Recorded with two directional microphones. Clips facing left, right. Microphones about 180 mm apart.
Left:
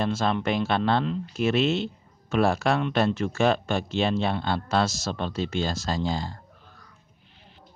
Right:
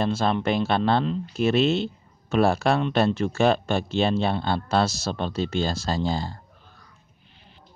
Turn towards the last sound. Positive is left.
turn(degrees=-30)  # may be behind; listen again after turning